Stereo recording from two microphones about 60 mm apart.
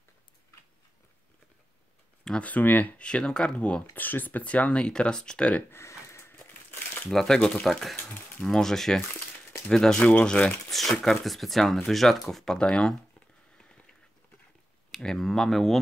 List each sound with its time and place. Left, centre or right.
2.4 s speech: left
3.9 s speech: left
5.7 s crumpling: left
7.1 s speech: centre
10.0 s speech: left
10.7 s speech: centre
14.9 s speech: centre